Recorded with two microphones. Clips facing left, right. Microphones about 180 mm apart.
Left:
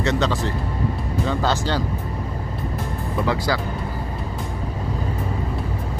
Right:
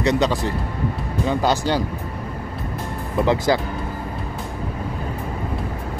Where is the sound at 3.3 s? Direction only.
20° right (ahead or behind).